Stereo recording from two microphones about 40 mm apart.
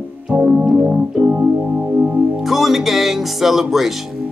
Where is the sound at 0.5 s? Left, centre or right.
Right.